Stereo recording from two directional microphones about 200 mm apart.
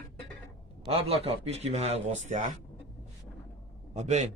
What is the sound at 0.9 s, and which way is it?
A man's voice, 30° right (ahead or behind).